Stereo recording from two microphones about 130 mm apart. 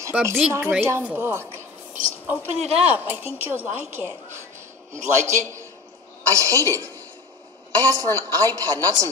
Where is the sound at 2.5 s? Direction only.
55° right (ahead or behind).